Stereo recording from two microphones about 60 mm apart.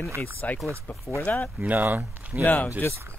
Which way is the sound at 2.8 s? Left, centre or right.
Left.